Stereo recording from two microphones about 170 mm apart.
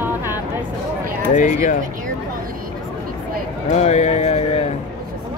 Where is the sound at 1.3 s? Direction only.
45° left (ahead or behind).